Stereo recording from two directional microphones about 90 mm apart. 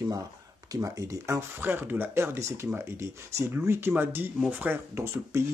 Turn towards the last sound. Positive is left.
turn(degrees=-25)  # may be behind; listen again after turning